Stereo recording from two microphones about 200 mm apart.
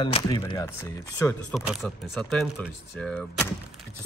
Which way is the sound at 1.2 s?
5° left (ahead or behind).